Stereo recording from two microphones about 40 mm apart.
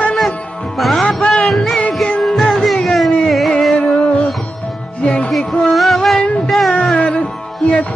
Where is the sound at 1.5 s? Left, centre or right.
Centre.